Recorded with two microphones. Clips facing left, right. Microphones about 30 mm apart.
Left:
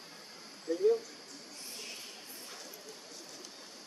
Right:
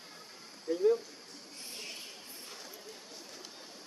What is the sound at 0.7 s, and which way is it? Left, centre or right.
Speech, right.